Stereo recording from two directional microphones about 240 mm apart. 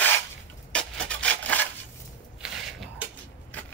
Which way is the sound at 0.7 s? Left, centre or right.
Centre.